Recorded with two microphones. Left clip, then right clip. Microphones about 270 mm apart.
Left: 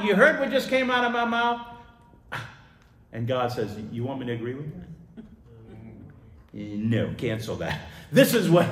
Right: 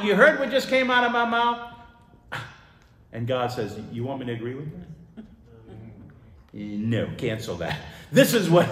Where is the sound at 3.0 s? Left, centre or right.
Centre.